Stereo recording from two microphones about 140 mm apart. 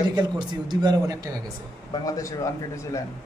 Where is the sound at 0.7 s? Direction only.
25° right (ahead or behind).